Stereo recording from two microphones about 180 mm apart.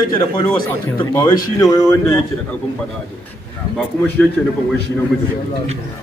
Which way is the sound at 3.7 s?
5° left (ahead or behind).